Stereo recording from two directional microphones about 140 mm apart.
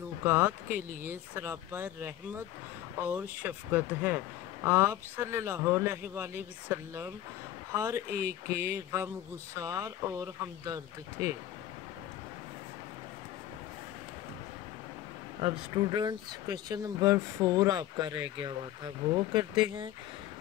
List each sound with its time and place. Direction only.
0.2 s speech: 15° right (ahead or behind)
15.4 s speech: 35° right (ahead or behind)